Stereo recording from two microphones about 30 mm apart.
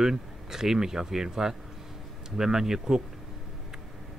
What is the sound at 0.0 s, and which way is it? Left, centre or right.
Speech, centre.